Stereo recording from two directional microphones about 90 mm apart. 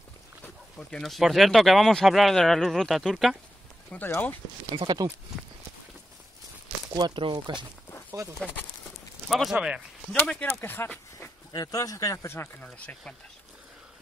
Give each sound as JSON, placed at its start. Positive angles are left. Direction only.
{"t": 0.7, "sound": "speech", "side_deg": 5}
{"t": 3.9, "sound": "speech", "side_deg": 20}
{"t": 4.7, "sound": "speech", "side_deg": -55}
{"t": 6.9, "sound": "speech", "side_deg": -50}
{"t": 9.3, "sound": "speech", "side_deg": -5}
{"t": 10.4, "sound": "speech", "side_deg": 25}
{"t": 11.1, "sound": "speech", "side_deg": 40}
{"t": 12.5, "sound": "speech", "side_deg": 15}